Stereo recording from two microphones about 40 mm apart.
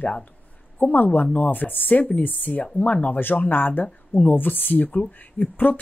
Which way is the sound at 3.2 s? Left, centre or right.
Left.